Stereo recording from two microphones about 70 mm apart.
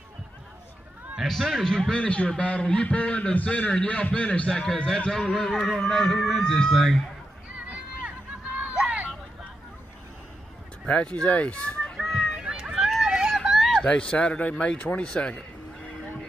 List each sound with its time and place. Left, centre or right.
1.1 s a man's voice: centre
7.5 s run: centre
11.1 s speech: centre
12.0 s run: centre
13.8 s a man's voice: centre